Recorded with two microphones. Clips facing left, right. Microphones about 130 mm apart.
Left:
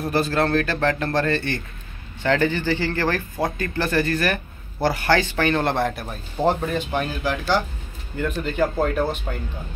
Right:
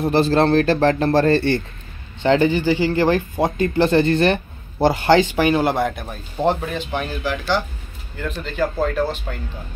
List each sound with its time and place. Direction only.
0.0 s speech: 25° right (ahead or behind)
2.2 s speech: 20° right (ahead or behind); by 8.6 s 5° left (ahead or behind)